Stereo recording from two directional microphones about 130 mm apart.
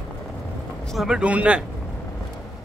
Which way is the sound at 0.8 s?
5° right (ahead or behind).